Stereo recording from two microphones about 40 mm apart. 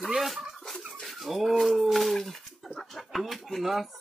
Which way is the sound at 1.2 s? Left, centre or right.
Centre.